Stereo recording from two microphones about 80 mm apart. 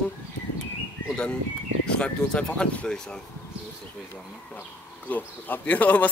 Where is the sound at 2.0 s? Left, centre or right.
Centre.